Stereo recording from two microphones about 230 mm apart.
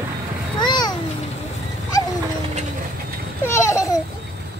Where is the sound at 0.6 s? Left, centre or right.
Centre.